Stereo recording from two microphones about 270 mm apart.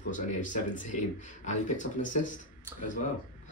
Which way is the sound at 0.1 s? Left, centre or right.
Left.